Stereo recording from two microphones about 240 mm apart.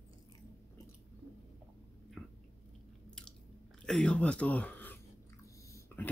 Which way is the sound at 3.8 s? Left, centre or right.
Centre.